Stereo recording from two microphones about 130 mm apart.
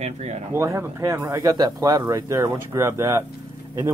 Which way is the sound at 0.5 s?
20° right (ahead or behind).